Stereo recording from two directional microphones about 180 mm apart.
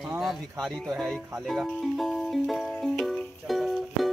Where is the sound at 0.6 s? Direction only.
Centre (ahead or behind).